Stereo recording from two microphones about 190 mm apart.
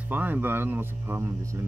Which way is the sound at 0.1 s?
10° right (ahead or behind).